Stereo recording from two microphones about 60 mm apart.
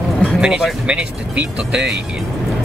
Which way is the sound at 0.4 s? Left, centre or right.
Centre.